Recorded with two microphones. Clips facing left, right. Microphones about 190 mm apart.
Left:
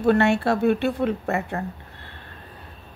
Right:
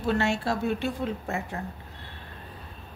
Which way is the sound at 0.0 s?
60° left (ahead or behind).